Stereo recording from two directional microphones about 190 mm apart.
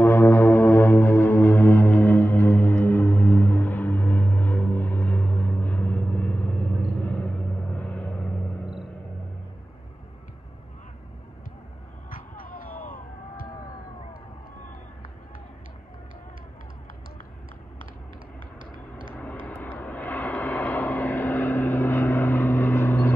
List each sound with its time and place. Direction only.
0.0 s music: 15° left (ahead or behind)
12.1 s music: 50° left (ahead or behind)
19.4 s vehicle: 10° left (ahead or behind)